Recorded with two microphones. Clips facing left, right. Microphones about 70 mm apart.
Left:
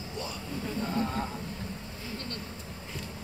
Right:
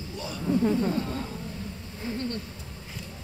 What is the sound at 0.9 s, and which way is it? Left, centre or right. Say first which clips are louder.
Speech: even; left.